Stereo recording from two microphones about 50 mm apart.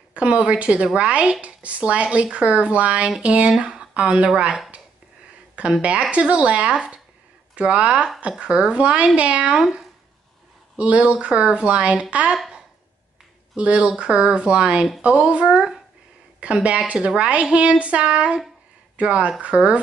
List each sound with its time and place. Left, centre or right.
0.1 s speech: right
5.8 s speech: right
9.6 s speech: centre
10.8 s speech: right
13.6 s speech: right